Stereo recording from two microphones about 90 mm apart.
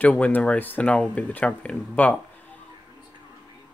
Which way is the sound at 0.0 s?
20° left (ahead or behind).